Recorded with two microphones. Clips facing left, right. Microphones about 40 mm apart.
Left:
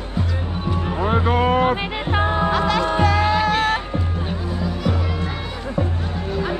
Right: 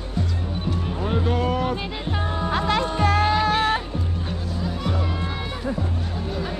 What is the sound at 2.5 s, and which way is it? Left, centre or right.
Music, left.